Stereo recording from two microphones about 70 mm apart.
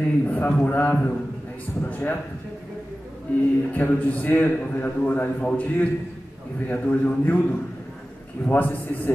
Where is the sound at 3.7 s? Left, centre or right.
Left.